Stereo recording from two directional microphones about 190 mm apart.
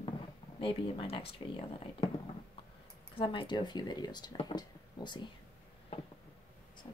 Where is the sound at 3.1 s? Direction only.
25° left (ahead or behind).